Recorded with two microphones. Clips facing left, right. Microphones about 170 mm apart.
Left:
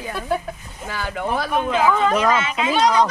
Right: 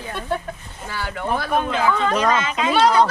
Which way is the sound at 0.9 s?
10° left (ahead or behind).